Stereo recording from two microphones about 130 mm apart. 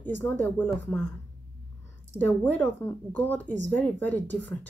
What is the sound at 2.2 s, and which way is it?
Speech, 15° left (ahead or behind).